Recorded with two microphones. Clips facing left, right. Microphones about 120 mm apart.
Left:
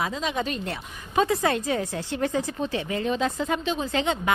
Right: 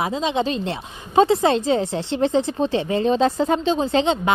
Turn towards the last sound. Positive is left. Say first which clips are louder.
# right 7 dB
turn(degrees=-25)  # may be behind; listen again after turning